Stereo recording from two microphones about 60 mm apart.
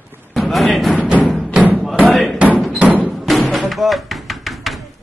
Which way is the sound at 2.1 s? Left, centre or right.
Centre.